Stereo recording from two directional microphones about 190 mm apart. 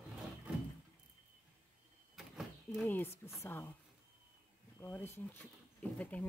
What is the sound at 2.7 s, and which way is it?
Speech, 10° left (ahead or behind).